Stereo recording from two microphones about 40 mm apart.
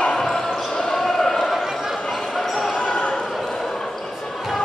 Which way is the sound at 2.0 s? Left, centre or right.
Centre.